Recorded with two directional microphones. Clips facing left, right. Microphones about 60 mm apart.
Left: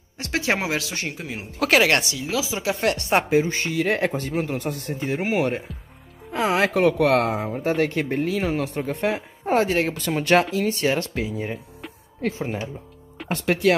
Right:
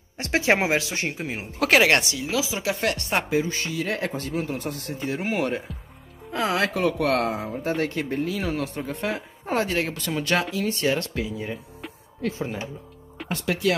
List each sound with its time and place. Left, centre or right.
0.2 s speech: right
1.6 s speech: centre
3.1 s speech: left
3.8 s speech: left
4.4 s speech: left
5.2 s speech: centre
6.4 s speech: left
6.7 s speech: left
7.1 s speech: left
7.9 s speech: left
9.9 s speech: left